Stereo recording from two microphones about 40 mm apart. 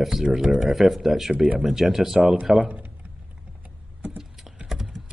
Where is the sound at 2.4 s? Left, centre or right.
Right.